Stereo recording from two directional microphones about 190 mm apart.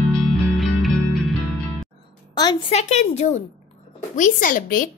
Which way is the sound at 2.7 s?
35° left (ahead or behind).